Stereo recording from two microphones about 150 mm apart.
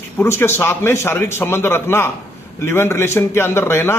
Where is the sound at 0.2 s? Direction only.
15° left (ahead or behind).